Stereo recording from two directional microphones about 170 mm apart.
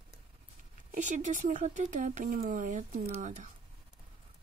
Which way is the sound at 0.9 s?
45° right (ahead or behind).